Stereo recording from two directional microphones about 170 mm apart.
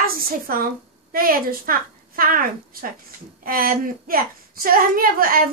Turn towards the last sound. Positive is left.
turn(degrees=-55)  # may be behind; listen again after turning